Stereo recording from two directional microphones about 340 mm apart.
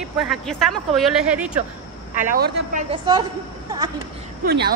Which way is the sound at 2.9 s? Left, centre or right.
Centre.